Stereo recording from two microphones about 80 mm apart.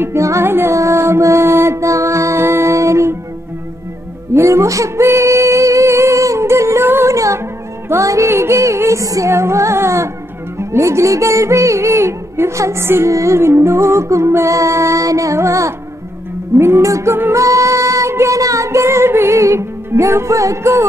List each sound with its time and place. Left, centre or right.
0.0 s music: right
4.3 s music: right
16.5 s female singing: right